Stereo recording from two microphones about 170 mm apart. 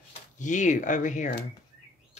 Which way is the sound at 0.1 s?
45° left (ahead or behind).